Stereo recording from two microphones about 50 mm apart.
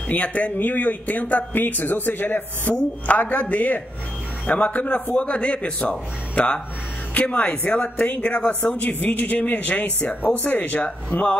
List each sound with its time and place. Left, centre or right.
0.1 s speech: left
8.2 s speech: left